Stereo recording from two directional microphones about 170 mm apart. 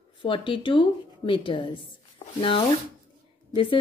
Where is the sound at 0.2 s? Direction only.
30° left (ahead or behind).